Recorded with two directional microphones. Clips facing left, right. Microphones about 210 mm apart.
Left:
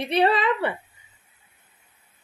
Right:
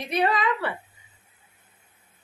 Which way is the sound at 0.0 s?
30° left (ahead or behind).